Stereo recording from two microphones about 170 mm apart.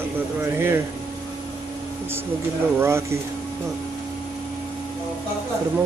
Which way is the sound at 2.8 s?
15° right (ahead or behind).